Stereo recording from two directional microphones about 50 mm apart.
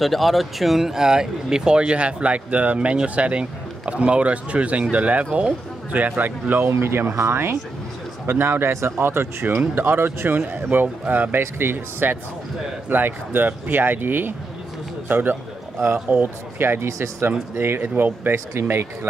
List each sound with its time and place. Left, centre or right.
0.0 s speech: centre; by 6.7 s right
6.7 s speech: right
11.3 s a man's voice: right
16.8 s speech: right
17.6 s speech: right
18.3 s speech: right